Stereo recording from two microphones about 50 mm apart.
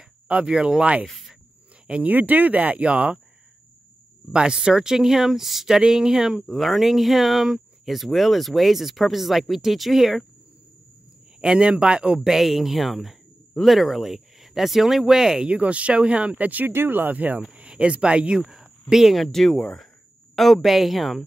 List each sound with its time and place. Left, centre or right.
0.5 s speech: centre
1.0 s speech: centre
1.9 s speech: right
4.3 s speech: centre
6.4 s speech: centre
11.4 s speech: centre
12.2 s speech: centre
15.5 s speech: right
16.7 s speech: right
17.4 s speech: right
18.4 s speech: centre